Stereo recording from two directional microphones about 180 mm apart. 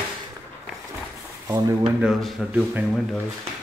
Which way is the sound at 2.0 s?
Centre (ahead or behind).